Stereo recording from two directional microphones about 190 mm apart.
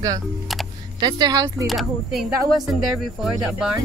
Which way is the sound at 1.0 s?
20° right (ahead or behind).